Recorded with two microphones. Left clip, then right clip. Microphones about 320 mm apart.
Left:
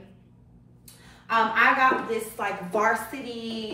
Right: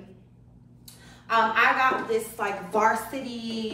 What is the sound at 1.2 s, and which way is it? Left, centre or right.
A woman's voice, centre.